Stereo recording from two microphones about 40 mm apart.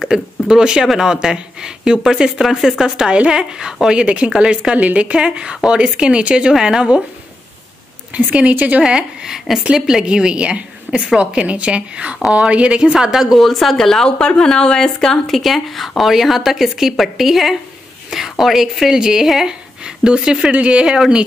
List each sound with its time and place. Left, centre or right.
0.0 s speech: centre
3.9 s a woman's voice: right
4.7 s a woman's voice: right
8.1 s speech: right
8.8 s a woman's voice: right
13.4 s speech: centre
14.0 s speech: left
15.2 s a woman's voice: centre